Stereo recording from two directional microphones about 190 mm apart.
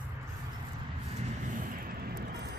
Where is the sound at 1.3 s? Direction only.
40° right (ahead or behind).